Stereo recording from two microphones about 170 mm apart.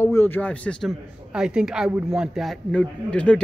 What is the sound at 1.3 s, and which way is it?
A man's voice, 5° right (ahead or behind).